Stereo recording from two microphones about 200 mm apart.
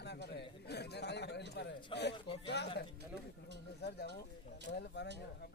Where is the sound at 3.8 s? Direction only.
55° left (ahead or behind).